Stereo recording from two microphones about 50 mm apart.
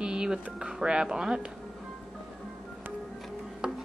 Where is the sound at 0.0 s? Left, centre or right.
Centre.